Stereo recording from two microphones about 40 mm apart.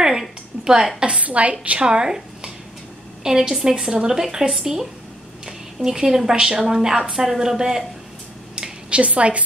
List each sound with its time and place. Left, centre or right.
0.0 s a sound: centre
1.2 s a woman's voice: right
1.9 s speech: right
3.3 s speech: centre
5.9 s speech: centre
9.0 s a woman's voice: right